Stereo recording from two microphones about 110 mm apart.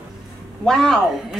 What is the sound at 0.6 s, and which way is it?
Speech, 5° left (ahead or behind).